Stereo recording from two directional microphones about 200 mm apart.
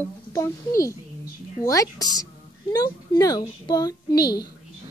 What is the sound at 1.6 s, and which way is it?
A child's voice, 15° left (ahead or behind).